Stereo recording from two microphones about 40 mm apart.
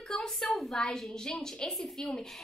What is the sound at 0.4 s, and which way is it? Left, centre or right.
Speech, centre.